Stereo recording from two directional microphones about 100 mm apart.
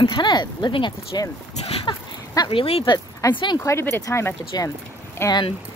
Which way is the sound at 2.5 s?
70° left (ahead or behind).